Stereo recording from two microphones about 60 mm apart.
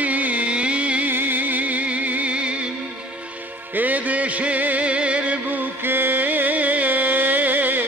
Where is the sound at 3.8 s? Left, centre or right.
Right.